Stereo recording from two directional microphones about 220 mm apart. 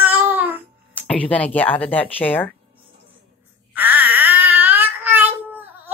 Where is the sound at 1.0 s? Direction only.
5° left (ahead or behind).